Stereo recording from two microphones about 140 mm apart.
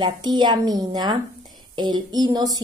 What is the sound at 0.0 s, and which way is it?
A woman's voice, 30° right (ahead or behind).